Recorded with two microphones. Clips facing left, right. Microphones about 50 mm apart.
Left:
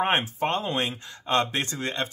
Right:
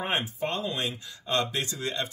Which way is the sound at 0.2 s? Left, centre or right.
Left.